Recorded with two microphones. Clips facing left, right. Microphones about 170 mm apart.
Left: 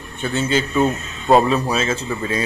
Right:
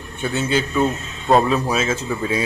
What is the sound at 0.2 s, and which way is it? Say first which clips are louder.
Speech: left 1 dB; 5° right (ahead or behind).